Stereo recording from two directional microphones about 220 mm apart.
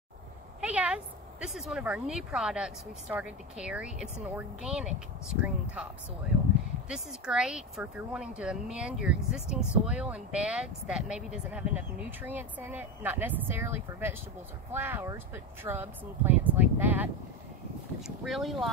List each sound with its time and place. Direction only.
0.6 s speech: 5° right (ahead or behind)
6.9 s speech: 5° right (ahead or behind)
18.2 s speech: centre (ahead or behind)